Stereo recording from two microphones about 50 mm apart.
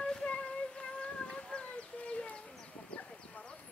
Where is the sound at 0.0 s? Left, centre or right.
Centre.